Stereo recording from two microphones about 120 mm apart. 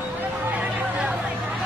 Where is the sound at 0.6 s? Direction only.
10° right (ahead or behind).